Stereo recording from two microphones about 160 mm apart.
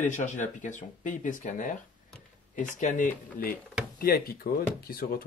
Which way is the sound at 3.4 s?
65° left (ahead or behind).